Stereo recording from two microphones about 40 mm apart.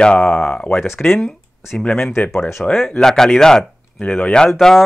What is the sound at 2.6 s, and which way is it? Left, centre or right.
Speech, centre.